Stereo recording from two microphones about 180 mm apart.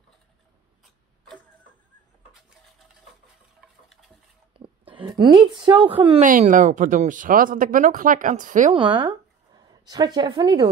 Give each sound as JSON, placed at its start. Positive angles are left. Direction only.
{"t": 4.6, "sound": "a woman's voice", "side_deg": -30}
{"t": 6.2, "sound": "speech", "side_deg": -45}
{"t": 8.7, "sound": "a woman's voice", "side_deg": -30}